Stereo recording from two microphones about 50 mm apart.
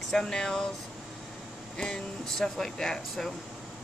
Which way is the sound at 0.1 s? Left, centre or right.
Centre.